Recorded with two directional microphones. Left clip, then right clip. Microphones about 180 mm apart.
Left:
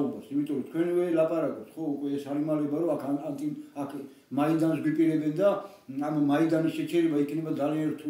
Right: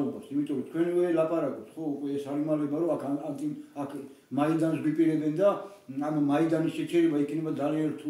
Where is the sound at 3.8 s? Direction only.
15° left (ahead or behind).